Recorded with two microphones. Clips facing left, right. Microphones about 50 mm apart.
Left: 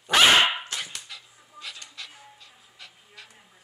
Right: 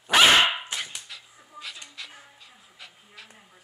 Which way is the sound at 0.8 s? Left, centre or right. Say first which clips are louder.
Even; centre.